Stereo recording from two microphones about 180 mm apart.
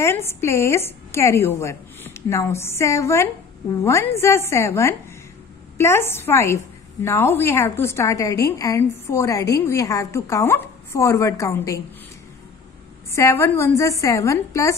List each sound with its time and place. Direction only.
0.0 s a woman's voice: 15° left (ahead or behind)
13.1 s a woman's voice: 15° left (ahead or behind)